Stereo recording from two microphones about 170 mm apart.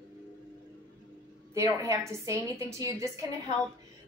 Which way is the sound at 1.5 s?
20° right (ahead or behind).